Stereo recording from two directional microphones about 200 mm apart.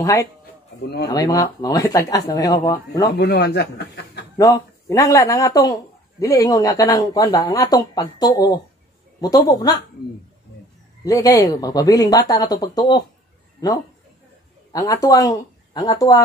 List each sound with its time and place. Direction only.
1.1 s a man's voice: 15° left (ahead or behind)
3.2 s speech: 55° left (ahead or behind)
4.4 s a man's voice: 15° left (ahead or behind)
11.1 s a man's voice: 15° left (ahead or behind)
14.7 s speech: 15° left (ahead or behind)